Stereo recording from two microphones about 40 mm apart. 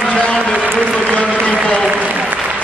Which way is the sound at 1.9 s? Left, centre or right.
Right.